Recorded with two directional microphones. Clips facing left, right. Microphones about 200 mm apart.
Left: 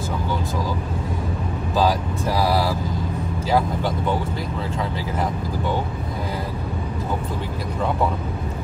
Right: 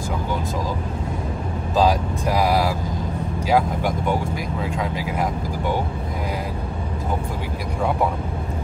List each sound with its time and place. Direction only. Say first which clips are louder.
1.8 s speech: right 2 dB; 15° right (ahead or behind)